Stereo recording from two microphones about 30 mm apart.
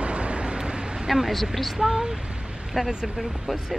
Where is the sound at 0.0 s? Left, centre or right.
Right.